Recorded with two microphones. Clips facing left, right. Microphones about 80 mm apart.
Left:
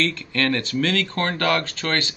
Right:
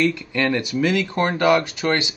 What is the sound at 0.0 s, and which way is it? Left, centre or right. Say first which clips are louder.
Speech: right 3 dB; centre.